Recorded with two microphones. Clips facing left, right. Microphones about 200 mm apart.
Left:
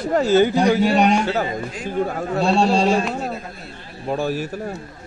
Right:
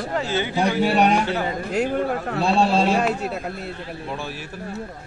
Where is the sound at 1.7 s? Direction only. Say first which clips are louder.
Right 2 dB; 65° right (ahead or behind).